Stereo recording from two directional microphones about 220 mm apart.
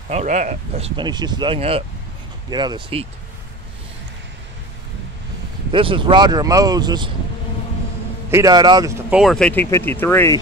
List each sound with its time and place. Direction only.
0.1 s speech: 30° right (ahead or behind)
5.7 s speech: 25° right (ahead or behind)
8.3 s a man's voice: 15° right (ahead or behind)
9.1 s speech: centre (ahead or behind)